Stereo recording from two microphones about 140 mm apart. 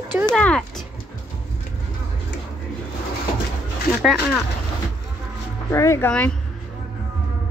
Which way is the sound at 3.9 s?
5° right (ahead or behind).